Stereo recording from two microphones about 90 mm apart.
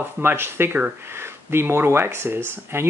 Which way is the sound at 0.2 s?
25° right (ahead or behind).